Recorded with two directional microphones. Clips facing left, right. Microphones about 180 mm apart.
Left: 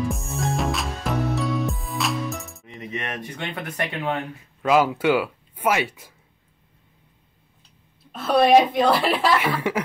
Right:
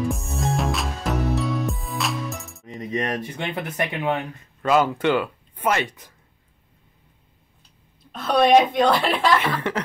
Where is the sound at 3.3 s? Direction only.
20° right (ahead or behind).